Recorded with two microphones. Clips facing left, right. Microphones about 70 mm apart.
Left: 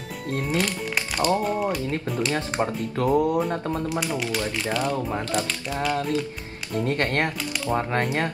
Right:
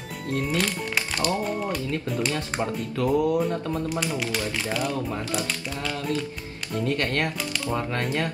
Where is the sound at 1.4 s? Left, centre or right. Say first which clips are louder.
Left 3 dB; centre.